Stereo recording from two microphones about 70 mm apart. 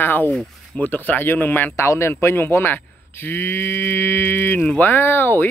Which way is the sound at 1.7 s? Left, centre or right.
Left.